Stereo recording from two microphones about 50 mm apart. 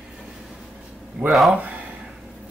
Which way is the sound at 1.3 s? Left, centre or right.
Centre.